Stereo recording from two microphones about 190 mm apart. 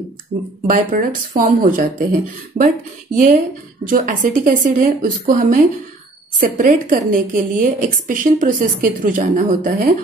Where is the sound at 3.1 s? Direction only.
45° right (ahead or behind).